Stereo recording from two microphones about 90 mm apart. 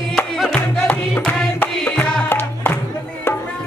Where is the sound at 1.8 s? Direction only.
20° left (ahead or behind).